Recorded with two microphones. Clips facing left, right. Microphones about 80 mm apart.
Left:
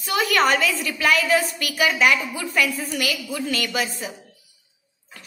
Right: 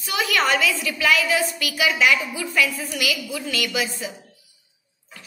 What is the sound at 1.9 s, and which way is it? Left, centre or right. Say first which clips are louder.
Speech: even; left.